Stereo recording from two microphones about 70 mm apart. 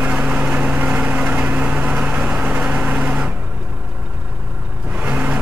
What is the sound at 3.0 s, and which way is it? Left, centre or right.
Vehicle, right.